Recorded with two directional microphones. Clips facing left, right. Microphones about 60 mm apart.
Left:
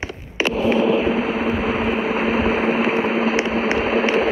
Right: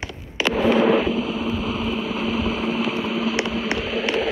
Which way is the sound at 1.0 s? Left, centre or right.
Left.